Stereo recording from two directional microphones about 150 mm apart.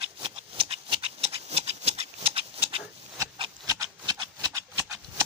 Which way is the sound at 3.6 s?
25° right (ahead or behind).